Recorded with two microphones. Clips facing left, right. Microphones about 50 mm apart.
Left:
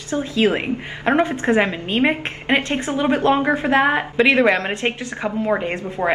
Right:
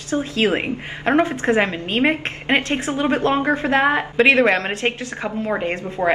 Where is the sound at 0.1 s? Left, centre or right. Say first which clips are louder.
Left 1 dB; right.